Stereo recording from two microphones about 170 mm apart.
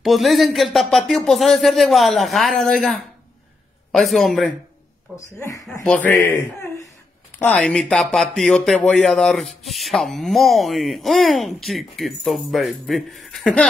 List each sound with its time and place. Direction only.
0.0 s speech: centre (ahead or behind)
5.1 s speech: 20° left (ahead or behind)